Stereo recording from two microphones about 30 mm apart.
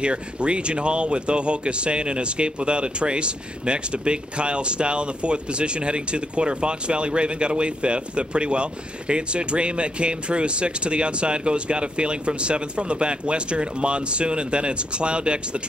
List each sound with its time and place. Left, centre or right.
0.0 s speech: right